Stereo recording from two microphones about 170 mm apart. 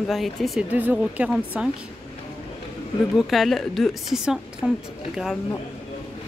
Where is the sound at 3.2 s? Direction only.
Centre (ahead or behind).